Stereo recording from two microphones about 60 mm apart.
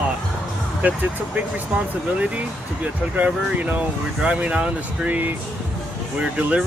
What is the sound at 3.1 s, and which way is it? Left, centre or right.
Speech, right.